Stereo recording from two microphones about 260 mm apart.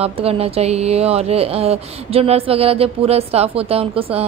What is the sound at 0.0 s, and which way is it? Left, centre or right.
A woman's voice, right.